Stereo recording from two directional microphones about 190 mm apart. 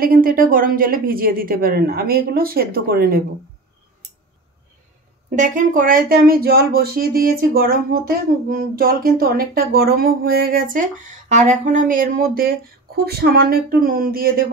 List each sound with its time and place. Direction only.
0.0 s speech: 50° right (ahead or behind)
5.3 s speech: 45° right (ahead or behind)